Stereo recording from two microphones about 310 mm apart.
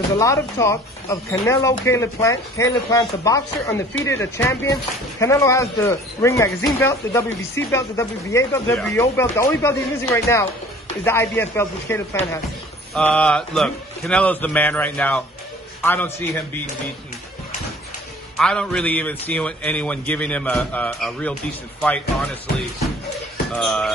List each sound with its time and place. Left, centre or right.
0.2 s a man's voice: centre
18.4 s a man's voice: centre
23.5 s a man's voice: centre